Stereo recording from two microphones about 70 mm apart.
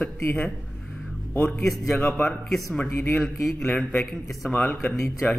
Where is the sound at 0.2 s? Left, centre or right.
Left.